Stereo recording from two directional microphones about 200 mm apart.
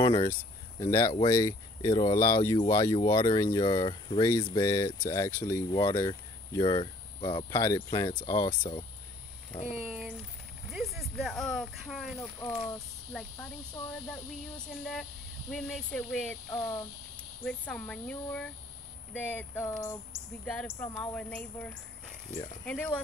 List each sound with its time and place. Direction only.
0.0 s speech: 25° left (ahead or behind)
9.8 s speech: centre (ahead or behind)
15.5 s speech: 5° left (ahead or behind)
20.1 s speech: centre (ahead or behind)